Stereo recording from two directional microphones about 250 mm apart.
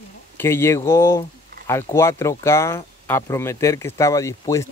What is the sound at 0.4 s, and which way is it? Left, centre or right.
Speech, centre.